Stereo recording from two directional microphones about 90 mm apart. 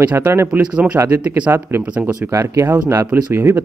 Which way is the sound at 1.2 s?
15° right (ahead or behind).